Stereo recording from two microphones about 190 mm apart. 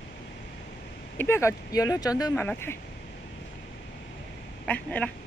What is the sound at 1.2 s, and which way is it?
A woman's voice, 15° left (ahead or behind).